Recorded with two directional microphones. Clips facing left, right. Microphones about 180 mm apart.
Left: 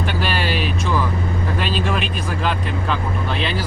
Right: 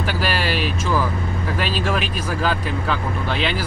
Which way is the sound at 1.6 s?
5° right (ahead or behind).